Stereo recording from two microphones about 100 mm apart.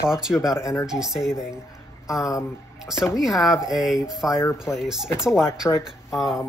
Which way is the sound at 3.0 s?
5° right (ahead or behind).